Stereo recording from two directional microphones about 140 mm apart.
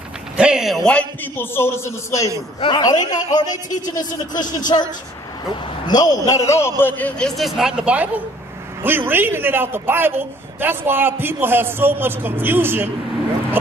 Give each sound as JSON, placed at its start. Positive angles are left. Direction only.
{"t": 0.4, "sound": "a man's voice", "side_deg": -5}
{"t": 5.9, "sound": "a man's voice", "side_deg": 30}